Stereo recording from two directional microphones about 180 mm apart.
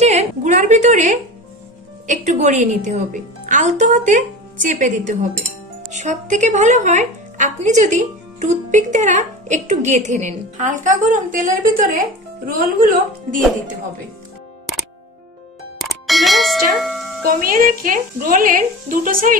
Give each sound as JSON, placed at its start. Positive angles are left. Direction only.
{"t": 0.0, "sound": "a woman's voice", "side_deg": -40}
{"t": 15.8, "sound": "speech", "side_deg": 0}
{"t": 17.3, "sound": "a woman's voice", "side_deg": -50}